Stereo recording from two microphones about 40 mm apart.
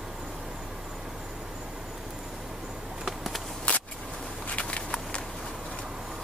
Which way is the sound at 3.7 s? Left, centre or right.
Left.